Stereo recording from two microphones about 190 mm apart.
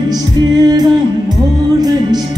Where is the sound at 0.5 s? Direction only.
20° right (ahead or behind).